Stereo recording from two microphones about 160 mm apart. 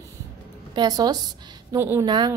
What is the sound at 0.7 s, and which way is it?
A woman's voice, 25° right (ahead or behind).